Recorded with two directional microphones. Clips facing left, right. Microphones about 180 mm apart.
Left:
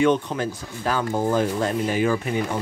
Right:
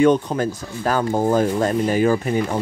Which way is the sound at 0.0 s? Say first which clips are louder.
Right 4 dB; 40° right (ahead or behind).